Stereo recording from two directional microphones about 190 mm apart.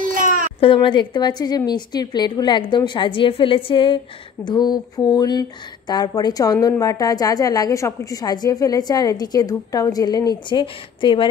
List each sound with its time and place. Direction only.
0.0 s cat: 45° right (ahead or behind)
0.6 s a woman's voice: 25° left (ahead or behind)